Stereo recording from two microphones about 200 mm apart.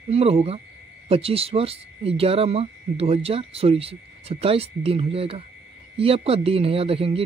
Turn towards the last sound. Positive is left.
turn(degrees=-30)  # may be behind; listen again after turning